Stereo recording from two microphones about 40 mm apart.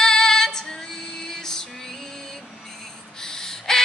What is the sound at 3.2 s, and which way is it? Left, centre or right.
Crow, centre.